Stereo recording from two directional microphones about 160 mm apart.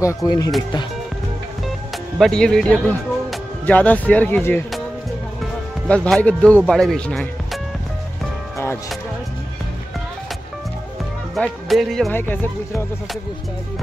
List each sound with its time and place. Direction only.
0.0 s speech: 20° left (ahead or behind)
2.1 s speech: 5° left (ahead or behind)
11.3 s speech: centre (ahead or behind)
12.1 s speech: 15° left (ahead or behind)